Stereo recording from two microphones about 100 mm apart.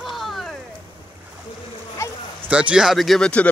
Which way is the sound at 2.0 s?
30° left (ahead or behind).